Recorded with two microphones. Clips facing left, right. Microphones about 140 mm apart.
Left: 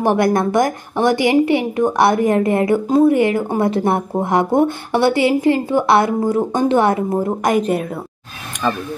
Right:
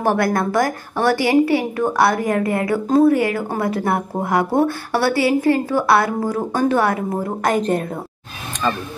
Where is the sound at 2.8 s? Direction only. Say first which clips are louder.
Right 2 dB; 10° left (ahead or behind).